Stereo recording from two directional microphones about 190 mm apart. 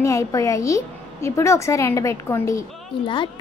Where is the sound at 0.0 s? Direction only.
15° left (ahead or behind).